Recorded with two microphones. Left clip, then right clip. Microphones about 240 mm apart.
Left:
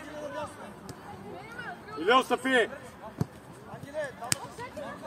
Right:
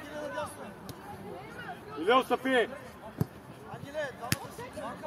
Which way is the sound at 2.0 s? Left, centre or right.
Left.